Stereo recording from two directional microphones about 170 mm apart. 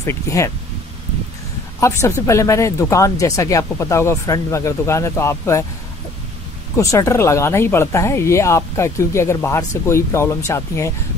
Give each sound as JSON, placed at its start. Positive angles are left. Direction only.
{"t": 0.0, "sound": "speech", "side_deg": 15}
{"t": 1.8, "sound": "speech", "side_deg": 15}
{"t": 6.8, "sound": "speech", "side_deg": 20}